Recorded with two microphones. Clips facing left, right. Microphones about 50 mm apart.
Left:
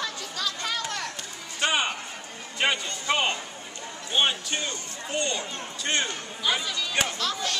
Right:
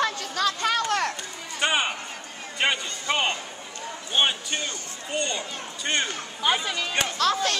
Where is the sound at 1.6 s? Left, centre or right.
Centre.